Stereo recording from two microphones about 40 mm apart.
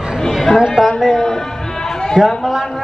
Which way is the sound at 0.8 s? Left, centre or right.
Centre.